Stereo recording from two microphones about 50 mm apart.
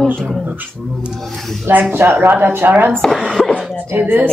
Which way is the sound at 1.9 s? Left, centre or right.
Right.